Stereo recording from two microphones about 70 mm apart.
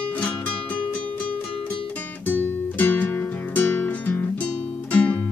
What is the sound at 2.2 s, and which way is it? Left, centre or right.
Music, left.